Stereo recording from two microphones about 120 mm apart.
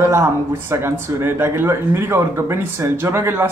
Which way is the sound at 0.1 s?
20° right (ahead or behind).